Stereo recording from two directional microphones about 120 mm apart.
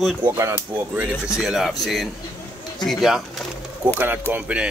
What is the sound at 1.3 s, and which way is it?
Speech, 5° right (ahead or behind).